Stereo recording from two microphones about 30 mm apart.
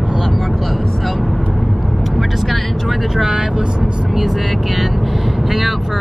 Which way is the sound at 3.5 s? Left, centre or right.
Right.